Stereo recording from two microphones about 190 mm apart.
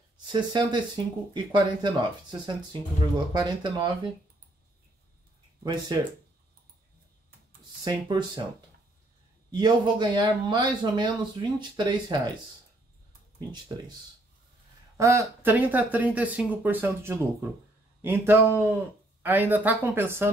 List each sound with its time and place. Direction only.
0.3 s speech: 25° right (ahead or behind)
5.6 s speech: 20° right (ahead or behind)
7.8 s speech: 20° right (ahead or behind)
9.5 s speech: 20° right (ahead or behind)
15.0 s speech: 15° right (ahead or behind)